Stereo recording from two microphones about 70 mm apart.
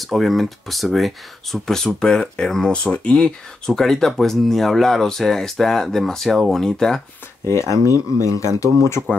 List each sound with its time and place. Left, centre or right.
0.0 s speech: centre
7.4 s speech: left
9.0 s speech: centre